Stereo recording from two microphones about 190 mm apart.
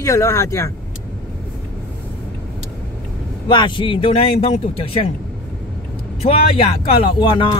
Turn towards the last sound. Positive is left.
turn(degrees=30)  # may be behind; listen again after turning